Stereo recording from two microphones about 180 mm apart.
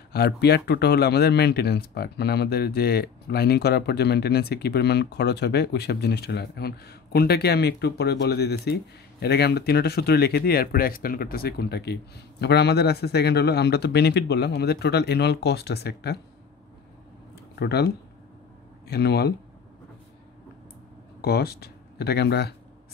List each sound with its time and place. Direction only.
0.1 s speech: 65° left (ahead or behind)
17.6 s speech: 65° left (ahead or behind)
21.2 s speech: 60° left (ahead or behind)